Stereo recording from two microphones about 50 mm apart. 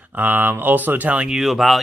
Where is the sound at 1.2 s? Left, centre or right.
Centre.